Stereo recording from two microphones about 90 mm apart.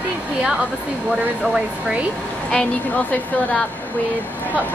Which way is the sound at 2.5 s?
15° left (ahead or behind).